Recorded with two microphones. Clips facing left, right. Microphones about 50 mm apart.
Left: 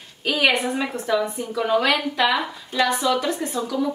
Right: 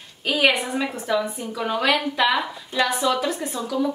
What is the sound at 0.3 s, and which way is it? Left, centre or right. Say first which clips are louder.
A woman's voice: even; centre.